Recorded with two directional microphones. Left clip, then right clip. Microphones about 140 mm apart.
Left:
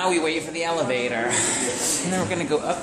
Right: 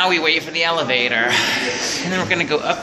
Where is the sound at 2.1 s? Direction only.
5° left (ahead or behind).